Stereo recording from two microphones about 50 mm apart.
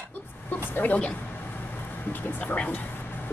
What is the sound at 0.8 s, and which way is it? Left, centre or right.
Speech, left.